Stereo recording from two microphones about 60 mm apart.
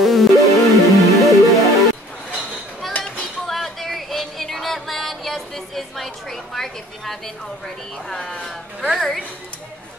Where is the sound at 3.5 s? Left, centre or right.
Centre.